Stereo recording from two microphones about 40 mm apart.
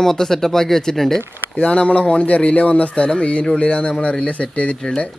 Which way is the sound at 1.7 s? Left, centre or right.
Left.